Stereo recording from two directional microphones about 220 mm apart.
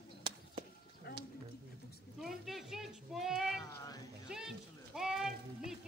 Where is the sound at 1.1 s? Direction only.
45° left (ahead or behind).